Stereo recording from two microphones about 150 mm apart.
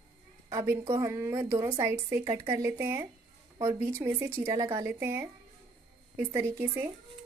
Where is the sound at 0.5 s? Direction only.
20° right (ahead or behind).